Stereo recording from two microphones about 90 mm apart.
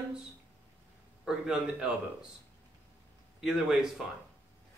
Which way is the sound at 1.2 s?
5° right (ahead or behind).